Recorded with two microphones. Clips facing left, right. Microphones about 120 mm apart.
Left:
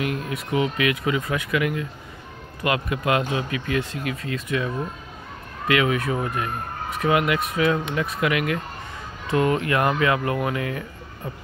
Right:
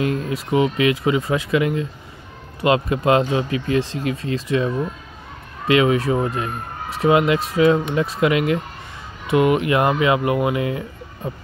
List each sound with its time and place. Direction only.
0.0 s speech: 30° right (ahead or behind)